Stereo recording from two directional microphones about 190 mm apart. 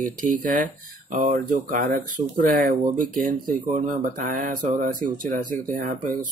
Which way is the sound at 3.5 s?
45° right (ahead or behind).